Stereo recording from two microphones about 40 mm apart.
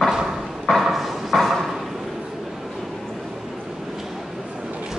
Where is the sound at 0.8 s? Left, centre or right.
Centre.